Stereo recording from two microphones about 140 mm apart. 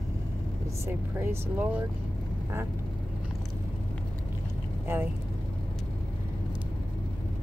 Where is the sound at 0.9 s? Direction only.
15° right (ahead or behind).